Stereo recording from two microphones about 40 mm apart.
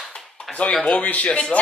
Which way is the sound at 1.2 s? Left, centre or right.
Left.